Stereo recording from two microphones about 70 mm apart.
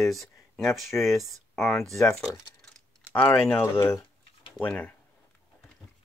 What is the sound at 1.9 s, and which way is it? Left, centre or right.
Speech, left.